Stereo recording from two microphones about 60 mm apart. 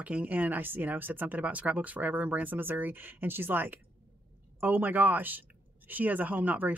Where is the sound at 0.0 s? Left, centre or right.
Right.